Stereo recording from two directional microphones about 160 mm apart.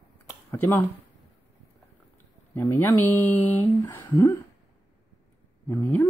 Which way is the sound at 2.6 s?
15° left (ahead or behind).